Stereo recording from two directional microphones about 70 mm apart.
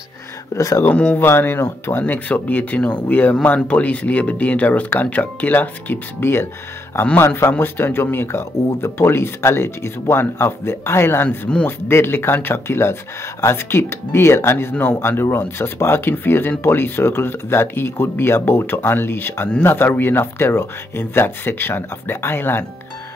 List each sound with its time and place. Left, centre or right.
0.6 s speech: left
0.8 s speech: left
11.2 s speech: centre
11.6 s speech: left